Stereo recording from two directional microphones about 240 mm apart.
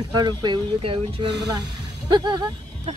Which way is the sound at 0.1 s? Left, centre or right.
Centre.